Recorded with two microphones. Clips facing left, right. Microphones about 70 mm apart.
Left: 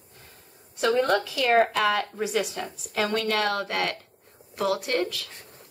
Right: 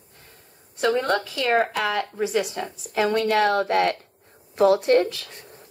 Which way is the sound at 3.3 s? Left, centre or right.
Right.